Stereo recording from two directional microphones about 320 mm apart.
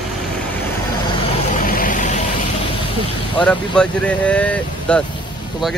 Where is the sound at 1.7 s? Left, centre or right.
Left.